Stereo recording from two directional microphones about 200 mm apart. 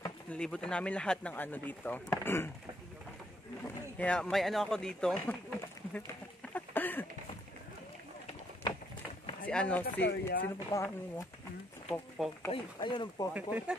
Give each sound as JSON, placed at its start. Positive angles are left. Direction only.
{"t": 0.3, "sound": "speech", "side_deg": 5}
{"t": 4.0, "sound": "a man's voice", "side_deg": 5}
{"t": 6.5, "sound": "a sound", "side_deg": 10}
{"t": 9.5, "sound": "speech", "side_deg": 5}
{"t": 10.0, "sound": "speech", "side_deg": 60}
{"t": 10.7, "sound": "speech", "side_deg": 15}
{"t": 12.2, "sound": "a man's voice", "side_deg": 0}
{"t": 12.5, "sound": "speech", "side_deg": 25}
{"t": 13.3, "sound": "speech", "side_deg": -10}